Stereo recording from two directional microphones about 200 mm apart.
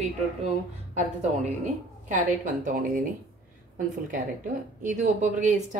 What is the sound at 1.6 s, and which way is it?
A woman's voice, 40° right (ahead or behind).